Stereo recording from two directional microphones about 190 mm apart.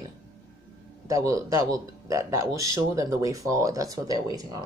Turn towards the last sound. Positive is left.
turn(degrees=-20)  # may be behind; listen again after turning